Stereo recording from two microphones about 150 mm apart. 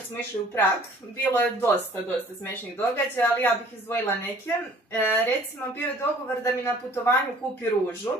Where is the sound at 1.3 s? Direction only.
10° left (ahead or behind).